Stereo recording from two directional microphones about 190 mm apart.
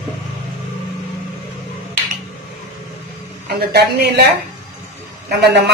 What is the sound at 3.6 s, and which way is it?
Speech, 60° right (ahead or behind).